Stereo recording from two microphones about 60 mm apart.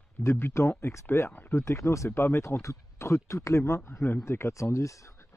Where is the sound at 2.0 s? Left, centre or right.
Left.